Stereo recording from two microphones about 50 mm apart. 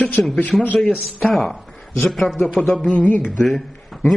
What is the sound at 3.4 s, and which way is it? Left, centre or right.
Speech, centre.